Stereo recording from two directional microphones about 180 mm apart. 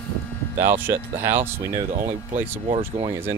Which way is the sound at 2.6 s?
30° right (ahead or behind).